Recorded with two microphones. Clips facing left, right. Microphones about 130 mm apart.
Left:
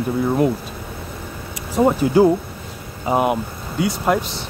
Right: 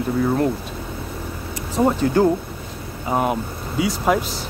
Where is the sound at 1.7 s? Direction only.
10° left (ahead or behind).